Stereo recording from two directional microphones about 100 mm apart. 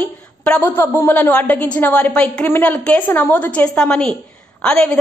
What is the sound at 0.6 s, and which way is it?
A woman's voice, 25° left (ahead or behind).